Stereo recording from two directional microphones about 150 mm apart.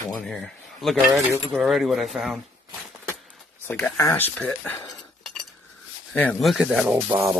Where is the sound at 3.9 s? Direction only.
15° left (ahead or behind).